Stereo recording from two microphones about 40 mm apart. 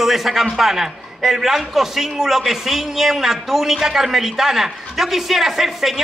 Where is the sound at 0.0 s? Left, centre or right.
Centre.